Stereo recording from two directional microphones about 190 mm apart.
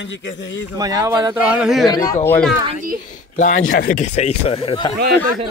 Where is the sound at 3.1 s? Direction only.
40° left (ahead or behind).